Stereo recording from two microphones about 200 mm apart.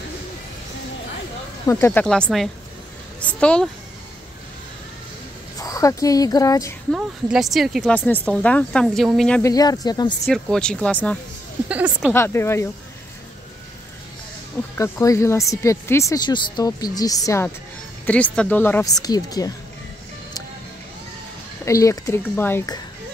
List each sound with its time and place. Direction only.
1.7 s speech: 10° left (ahead or behind)
5.6 s a woman's voice: 15° left (ahead or behind)
6.9 s speech: centre (ahead or behind)
9.4 s speech: 20° left (ahead or behind)
10.2 s speech: centre (ahead or behind)
11.7 s speech: 5° right (ahead or behind)
12.1 s speech: 10° left (ahead or behind)
14.8 s speech: 15° left (ahead or behind)
21.6 s speech: 15° left (ahead or behind)